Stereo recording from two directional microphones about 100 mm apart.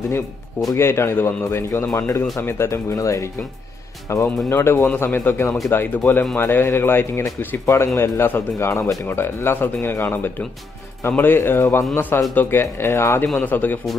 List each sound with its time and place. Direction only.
0.7 s speech: 25° left (ahead or behind)